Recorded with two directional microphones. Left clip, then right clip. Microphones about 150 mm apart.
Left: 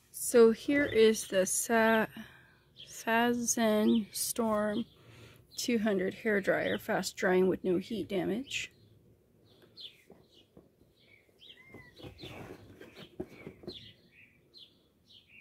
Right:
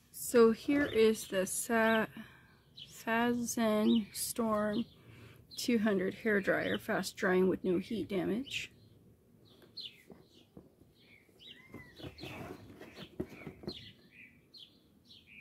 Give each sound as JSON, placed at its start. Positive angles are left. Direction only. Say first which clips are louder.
{"t": 0.2, "sound": "a woman's voice", "louder": "left 3 dB", "side_deg": 25}
{"t": 12.0, "sound": "bird", "louder": "right 1 dB", "side_deg": -10}